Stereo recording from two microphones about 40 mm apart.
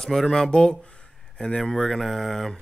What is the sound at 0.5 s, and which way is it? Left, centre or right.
Speech, left.